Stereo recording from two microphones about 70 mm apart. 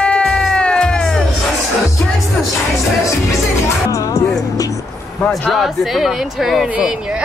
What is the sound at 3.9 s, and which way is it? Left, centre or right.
Music, left.